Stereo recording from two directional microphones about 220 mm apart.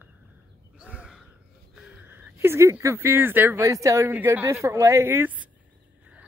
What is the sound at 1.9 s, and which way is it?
Speech, 10° right (ahead or behind).